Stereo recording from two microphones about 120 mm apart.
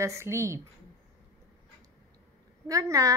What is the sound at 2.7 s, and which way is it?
Speech, 30° right (ahead or behind).